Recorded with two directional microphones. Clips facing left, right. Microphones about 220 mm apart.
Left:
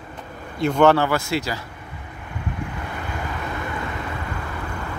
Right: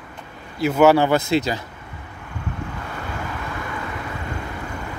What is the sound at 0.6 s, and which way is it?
Speech, 5° right (ahead or behind).